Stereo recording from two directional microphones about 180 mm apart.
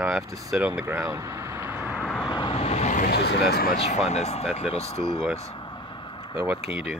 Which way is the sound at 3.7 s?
35° left (ahead or behind).